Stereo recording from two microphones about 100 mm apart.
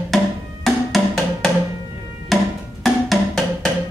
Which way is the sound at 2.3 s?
Centre (ahead or behind).